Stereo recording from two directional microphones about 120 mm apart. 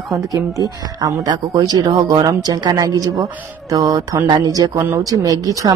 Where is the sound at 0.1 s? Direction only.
30° right (ahead or behind).